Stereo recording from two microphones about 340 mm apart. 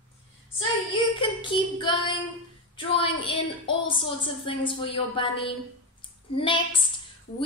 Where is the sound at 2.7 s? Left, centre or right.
Centre.